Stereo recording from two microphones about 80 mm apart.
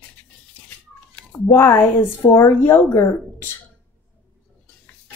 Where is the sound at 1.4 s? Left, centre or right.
Left.